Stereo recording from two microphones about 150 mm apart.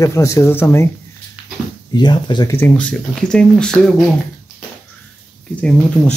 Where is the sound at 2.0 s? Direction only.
30° left (ahead or behind).